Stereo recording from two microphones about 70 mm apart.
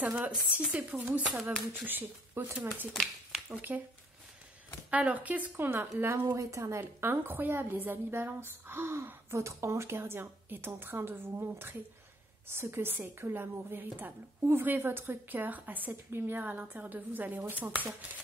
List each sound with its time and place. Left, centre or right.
0.0 s a woman's voice: centre
3.0 s a sound: centre
3.5 s a woman's voice: right
4.9 s a woman's voice: right
6.3 s a woman's voice: right